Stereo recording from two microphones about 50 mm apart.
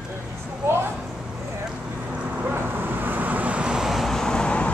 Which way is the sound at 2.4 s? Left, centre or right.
Right.